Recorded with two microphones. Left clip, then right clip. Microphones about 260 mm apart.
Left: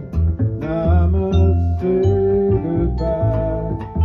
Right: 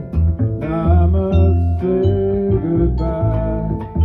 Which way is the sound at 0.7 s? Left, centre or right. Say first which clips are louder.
Right 1 dB; right.